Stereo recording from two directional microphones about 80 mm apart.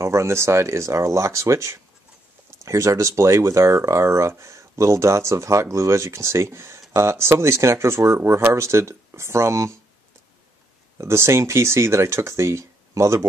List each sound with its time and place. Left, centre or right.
0.0 s speech: right
11.0 s speech: right